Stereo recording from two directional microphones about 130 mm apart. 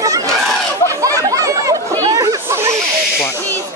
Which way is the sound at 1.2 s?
25° right (ahead or behind).